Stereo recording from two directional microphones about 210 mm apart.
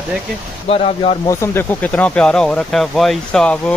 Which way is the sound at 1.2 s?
10° left (ahead or behind).